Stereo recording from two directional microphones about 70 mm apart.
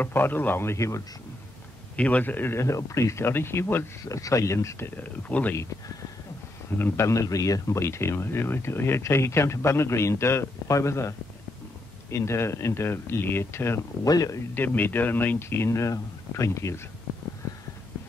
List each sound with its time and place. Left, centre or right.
0.0 s speech: left
2.0 s speech: left
2.6 s speech: left
4.0 s speech: left
4.9 s speech: left
6.8 s speech: left
14.0 s speech: left
14.5 s speech: left